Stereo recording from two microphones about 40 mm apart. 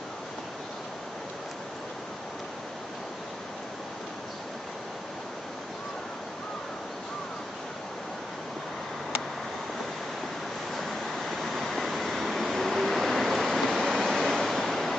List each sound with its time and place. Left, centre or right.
10.8 s waterfall: centre